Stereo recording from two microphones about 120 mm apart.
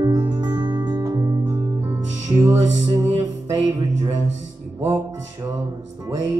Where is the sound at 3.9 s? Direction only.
60° right (ahead or behind).